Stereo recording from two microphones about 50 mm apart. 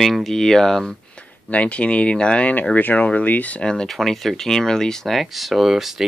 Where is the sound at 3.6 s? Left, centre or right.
Centre.